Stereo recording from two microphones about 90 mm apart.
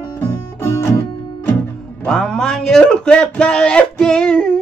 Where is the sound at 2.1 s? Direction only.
5° left (ahead or behind).